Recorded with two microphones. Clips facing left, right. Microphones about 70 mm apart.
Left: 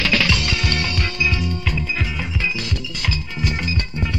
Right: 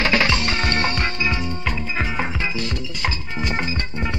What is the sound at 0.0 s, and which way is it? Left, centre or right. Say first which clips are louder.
Music: right 1 dB; right.